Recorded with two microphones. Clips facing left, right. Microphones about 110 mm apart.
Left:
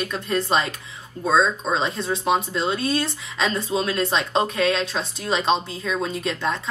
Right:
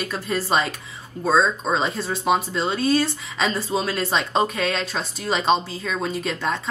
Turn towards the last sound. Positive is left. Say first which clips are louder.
# even
turn(degrees=0)  # may be behind; listen again after turning